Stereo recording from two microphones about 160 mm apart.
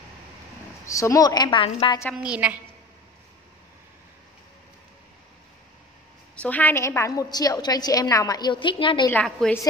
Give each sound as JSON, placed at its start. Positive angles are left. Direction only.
{"t": 0.8, "sound": "a woman's voice", "side_deg": 20}
{"t": 2.0, "sound": "a woman's voice", "side_deg": -5}
{"t": 6.3, "sound": "a woman's voice", "side_deg": 10}
{"t": 9.1, "sound": "a woman's voice", "side_deg": 10}